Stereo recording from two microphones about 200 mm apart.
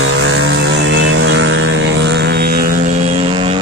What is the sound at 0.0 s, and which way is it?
Vehicle, 70° right (ahead or behind).